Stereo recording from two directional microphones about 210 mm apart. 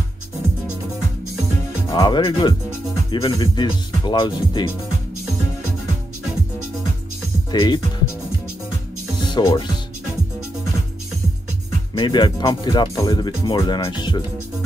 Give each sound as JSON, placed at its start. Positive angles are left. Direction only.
{"t": 1.9, "sound": "speech", "side_deg": 20}
{"t": 7.5, "sound": "speech", "side_deg": 20}
{"t": 9.2, "sound": "speech", "side_deg": 20}
{"t": 11.9, "sound": "speech", "side_deg": 20}